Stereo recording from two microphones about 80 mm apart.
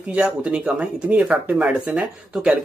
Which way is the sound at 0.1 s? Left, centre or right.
Centre.